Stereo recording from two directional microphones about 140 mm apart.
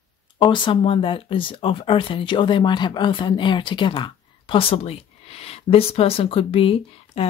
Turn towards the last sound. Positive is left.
turn(degrees=45)  # may be behind; listen again after turning